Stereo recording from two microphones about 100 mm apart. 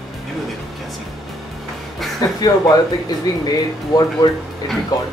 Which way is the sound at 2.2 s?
40° left (ahead or behind).